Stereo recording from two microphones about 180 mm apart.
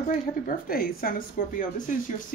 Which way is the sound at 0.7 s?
55° left (ahead or behind).